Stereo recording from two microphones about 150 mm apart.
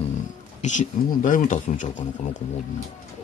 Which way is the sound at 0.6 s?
55° left (ahead or behind).